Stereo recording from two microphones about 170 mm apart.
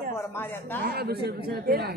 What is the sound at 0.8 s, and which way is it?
Speech, 70° right (ahead or behind).